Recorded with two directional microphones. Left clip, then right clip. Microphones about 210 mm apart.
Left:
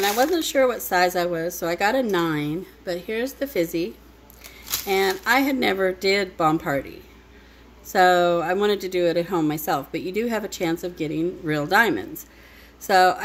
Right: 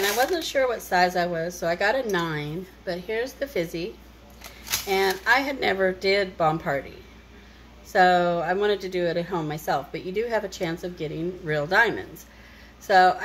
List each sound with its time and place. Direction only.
0.2 s speech: 50° left (ahead or behind)
7.9 s speech: 50° left (ahead or behind)